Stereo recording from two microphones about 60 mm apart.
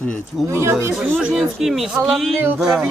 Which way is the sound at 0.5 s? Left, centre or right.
Right.